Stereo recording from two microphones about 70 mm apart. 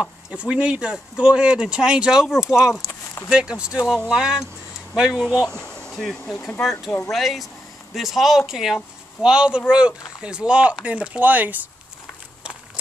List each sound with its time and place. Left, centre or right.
0.0 s speech: centre
5.5 s speech: centre; by 11.5 s right